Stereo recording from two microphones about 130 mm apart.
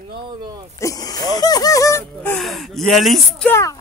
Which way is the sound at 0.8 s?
25° left (ahead or behind).